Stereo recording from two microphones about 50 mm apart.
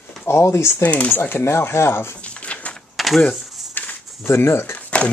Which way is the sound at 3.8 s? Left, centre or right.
Left.